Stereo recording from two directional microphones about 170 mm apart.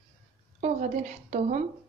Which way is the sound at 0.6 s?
45° right (ahead or behind).